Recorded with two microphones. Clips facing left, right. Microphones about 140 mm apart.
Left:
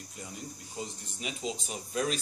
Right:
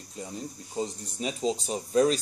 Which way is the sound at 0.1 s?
30° right (ahead or behind).